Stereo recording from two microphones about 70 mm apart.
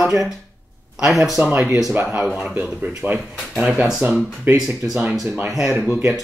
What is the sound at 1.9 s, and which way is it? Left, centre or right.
Speech, right.